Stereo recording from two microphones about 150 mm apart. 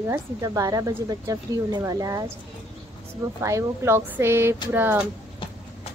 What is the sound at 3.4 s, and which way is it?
A woman's voice, 20° right (ahead or behind).